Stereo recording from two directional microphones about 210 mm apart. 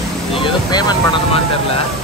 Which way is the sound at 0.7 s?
20° left (ahead or behind).